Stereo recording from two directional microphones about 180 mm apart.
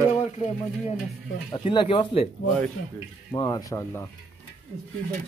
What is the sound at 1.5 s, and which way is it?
Speech, 30° left (ahead or behind).